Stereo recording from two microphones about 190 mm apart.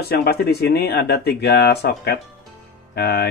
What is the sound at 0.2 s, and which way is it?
Speech, 55° left (ahead or behind).